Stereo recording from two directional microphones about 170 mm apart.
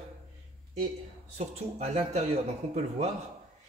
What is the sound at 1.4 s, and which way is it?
A man's voice, 40° right (ahead or behind).